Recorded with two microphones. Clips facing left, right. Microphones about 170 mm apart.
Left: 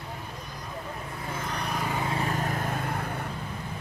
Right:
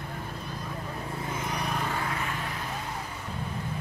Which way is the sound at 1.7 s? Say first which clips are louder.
Left 1 dB; 10° left (ahead or behind).